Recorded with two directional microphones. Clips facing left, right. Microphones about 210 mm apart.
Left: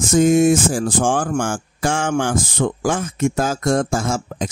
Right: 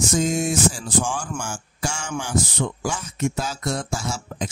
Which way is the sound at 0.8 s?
90° left.